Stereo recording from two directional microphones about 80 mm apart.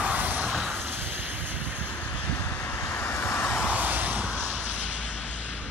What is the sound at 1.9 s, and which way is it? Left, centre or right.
Vehicle, centre.